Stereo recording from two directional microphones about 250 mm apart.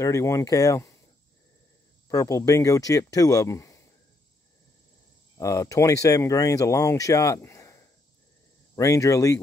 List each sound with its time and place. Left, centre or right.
0.0 s speech: centre
2.0 s speech: centre
5.4 s speech: centre